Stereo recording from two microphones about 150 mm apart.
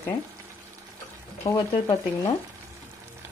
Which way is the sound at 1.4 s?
40° left (ahead or behind).